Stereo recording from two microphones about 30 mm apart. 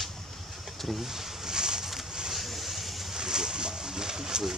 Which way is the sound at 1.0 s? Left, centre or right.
Centre.